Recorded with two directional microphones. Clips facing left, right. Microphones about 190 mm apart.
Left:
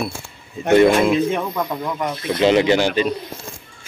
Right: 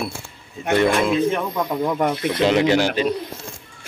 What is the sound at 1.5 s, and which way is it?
Speech, 5° right (ahead or behind).